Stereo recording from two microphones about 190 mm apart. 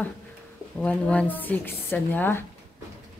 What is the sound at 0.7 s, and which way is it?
Speech, 5° left (ahead or behind).